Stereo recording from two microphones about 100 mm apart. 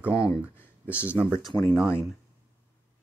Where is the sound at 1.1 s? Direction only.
15° right (ahead or behind).